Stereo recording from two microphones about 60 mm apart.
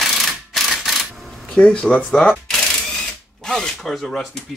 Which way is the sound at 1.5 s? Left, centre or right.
Centre.